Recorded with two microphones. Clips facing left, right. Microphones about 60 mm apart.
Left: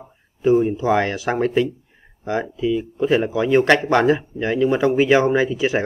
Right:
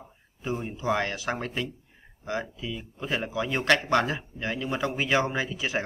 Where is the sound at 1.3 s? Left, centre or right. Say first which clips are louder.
Left 13 dB; left.